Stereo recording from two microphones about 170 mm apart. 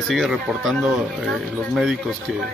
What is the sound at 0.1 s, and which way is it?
Speech, centre (ahead or behind).